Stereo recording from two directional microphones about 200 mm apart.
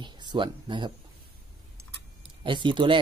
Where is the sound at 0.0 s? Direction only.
20° right (ahead or behind).